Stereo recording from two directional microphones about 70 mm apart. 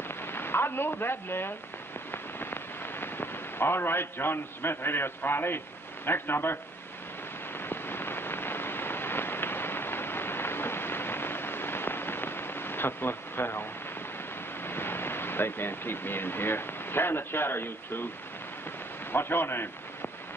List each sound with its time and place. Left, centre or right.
0.3 s a woman's voice: left
7.7 s rain on surface: left
14.6 s speech: left
19.1 s a man's voice: left